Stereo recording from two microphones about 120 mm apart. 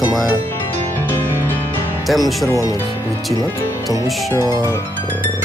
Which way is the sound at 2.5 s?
30° left (ahead or behind).